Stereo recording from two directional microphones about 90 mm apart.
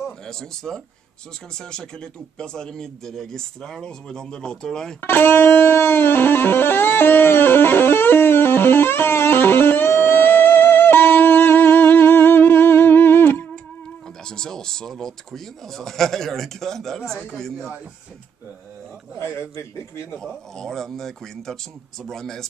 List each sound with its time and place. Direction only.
0.3 s speech: 5° left (ahead or behind)
5.0 s music: 25° left (ahead or behind)
14.3 s speech: 5° left (ahead or behind)
19.5 s a man's voice: 30° left (ahead or behind)
20.5 s speech: 5° left (ahead or behind)